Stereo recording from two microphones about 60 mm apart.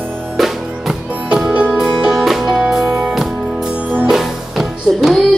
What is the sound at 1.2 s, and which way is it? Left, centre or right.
Music, centre.